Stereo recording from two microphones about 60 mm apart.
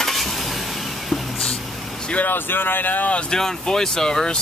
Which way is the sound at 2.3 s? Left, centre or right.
Left.